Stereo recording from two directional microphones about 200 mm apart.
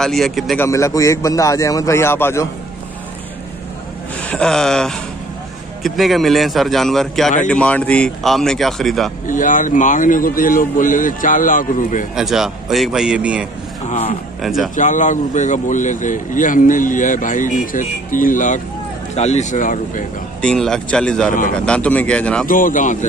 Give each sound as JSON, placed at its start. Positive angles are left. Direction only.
{"t": 0.0, "sound": "speech", "side_deg": 0}
{"t": 0.7, "sound": "a man's voice", "side_deg": 15}
{"t": 4.2, "sound": "speech", "side_deg": 5}
{"t": 9.3, "sound": "a man's voice", "side_deg": 40}
{"t": 12.2, "sound": "speech", "side_deg": 0}
{"t": 13.8, "sound": "a man's voice", "side_deg": 30}
{"t": 14.4, "sound": "speech", "side_deg": 0}
{"t": 14.8, "sound": "a man's voice", "side_deg": 40}
{"t": 20.4, "sound": "speech", "side_deg": 5}
{"t": 21.3, "sound": "a man's voice", "side_deg": 40}
{"t": 21.5, "sound": "speech", "side_deg": 5}
{"t": 22.5, "sound": "a man's voice", "side_deg": 40}